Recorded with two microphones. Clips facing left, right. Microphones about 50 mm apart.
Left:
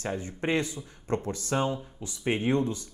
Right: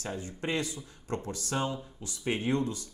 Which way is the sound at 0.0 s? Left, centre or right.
Left.